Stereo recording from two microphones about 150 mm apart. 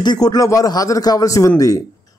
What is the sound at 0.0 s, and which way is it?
A man's voice, 30° left (ahead or behind).